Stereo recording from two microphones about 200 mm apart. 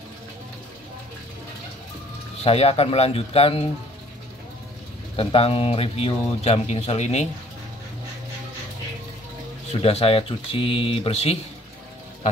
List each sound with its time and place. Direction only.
2.4 s speech: 30° left (ahead or behind)
5.1 s speech: 30° left (ahead or behind)
9.7 s speech: 30° left (ahead or behind)